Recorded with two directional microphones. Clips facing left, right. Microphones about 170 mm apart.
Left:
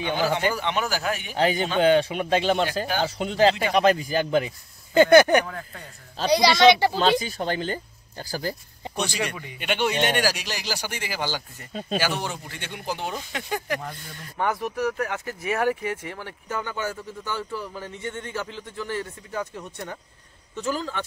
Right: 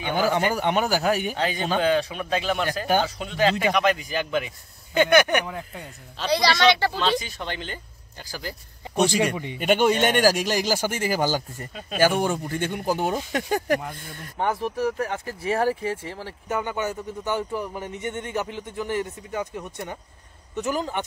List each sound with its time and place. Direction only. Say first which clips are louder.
0.1 s speech: right 2 dB; 45° right (ahead or behind)
1.3 s speech: left 2 dB; 30° left (ahead or behind)
5.4 s speech: right 1 dB; 15° right (ahead or behind)
6.3 s speech: left 3 dB; 15° left (ahead or behind)
6.9 s speech: left 3 dB; 35° left (ahead or behind)
8.9 s speech: right 7 dB; 45° right (ahead or behind)
9.3 s speech: right 7 dB; 25° right (ahead or behind)
9.6 s speech: right 5 dB; 45° right (ahead or behind)
14.4 s speech: right 1 dB; 30° right (ahead or behind)
16.4 s speech: right 3 dB; 20° right (ahead or behind)